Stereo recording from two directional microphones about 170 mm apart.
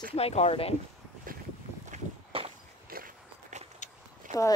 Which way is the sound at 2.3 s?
35° right (ahead or behind).